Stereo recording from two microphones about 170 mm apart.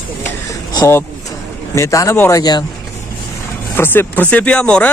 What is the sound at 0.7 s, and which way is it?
A woman's voice, 15° left (ahead or behind).